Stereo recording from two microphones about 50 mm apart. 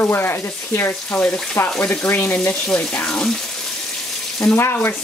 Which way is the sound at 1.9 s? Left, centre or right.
Left.